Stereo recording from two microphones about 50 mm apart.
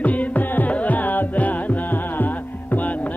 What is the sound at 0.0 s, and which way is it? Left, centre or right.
Carnatic music, left.